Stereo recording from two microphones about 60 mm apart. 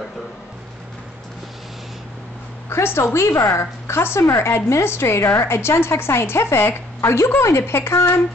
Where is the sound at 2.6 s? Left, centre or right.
Left.